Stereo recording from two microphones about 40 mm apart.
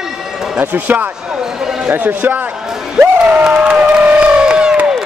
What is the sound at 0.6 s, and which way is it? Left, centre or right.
Speech, right.